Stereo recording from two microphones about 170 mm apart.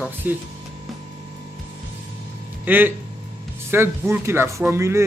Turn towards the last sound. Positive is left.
turn(degrees=-15)  # may be behind; listen again after turning